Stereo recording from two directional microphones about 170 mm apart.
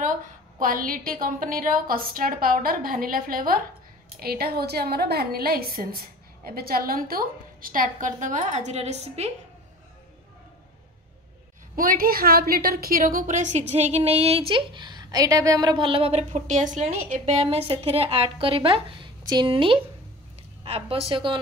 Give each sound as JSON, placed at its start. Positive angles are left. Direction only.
{"t": 0.6, "sound": "a woman's voice", "side_deg": -55}
{"t": 11.7, "sound": "a woman's voice", "side_deg": -55}